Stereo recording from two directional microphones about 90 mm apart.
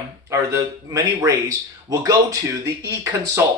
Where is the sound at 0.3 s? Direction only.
35° right (ahead or behind).